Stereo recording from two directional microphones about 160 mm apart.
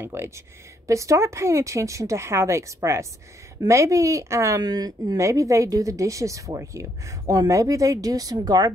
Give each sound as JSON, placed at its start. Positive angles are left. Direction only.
{"t": 0.0, "sound": "speech", "side_deg": -15}